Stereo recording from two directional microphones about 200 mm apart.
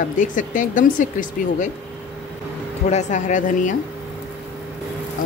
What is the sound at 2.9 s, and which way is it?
Speech, 35° left (ahead or behind).